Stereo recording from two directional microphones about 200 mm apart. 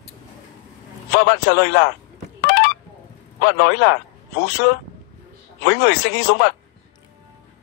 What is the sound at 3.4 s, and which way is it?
A man's voice, 55° left (ahead or behind).